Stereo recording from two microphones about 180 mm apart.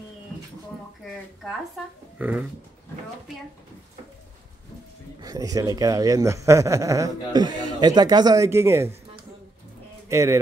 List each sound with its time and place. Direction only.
2.1 s a sound: 10° right (ahead or behind)
5.2 s a man's voice: 20° right (ahead or behind)
10.0 s speech: 15° right (ahead or behind)